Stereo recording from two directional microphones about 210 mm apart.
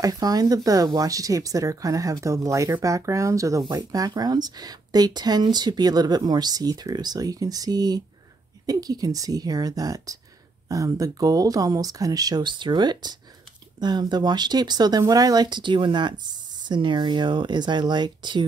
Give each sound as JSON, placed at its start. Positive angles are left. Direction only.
{"t": 0.0, "sound": "speech", "side_deg": -15}